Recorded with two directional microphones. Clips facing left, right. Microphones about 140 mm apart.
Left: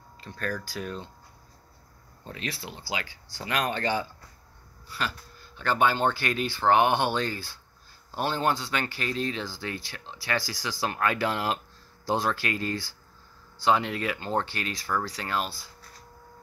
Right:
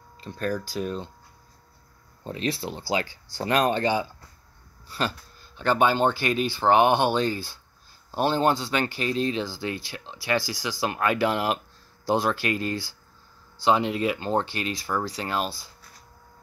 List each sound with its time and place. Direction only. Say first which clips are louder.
0.2 s speech: right 5 dB; 20° right (ahead or behind)
2.2 s speech: right 8 dB; 25° right (ahead or behind)
3.8 s speech: right 4 dB; 15° right (ahead or behind)
4.8 s speech: right 4 dB; 30° right (ahead or behind)